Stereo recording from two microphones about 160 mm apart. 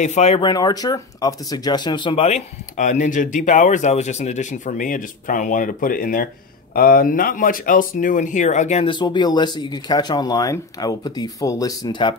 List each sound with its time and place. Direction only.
0.0 s speech: 45° left (ahead or behind)
0.4 s speech: 25° left (ahead or behind); by 8.8 s 45° left (ahead or behind)
8.8 s speech: 30° left (ahead or behind)